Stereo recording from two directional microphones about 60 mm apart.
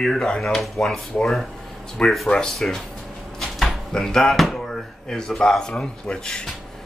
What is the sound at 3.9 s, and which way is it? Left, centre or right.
Speech, centre.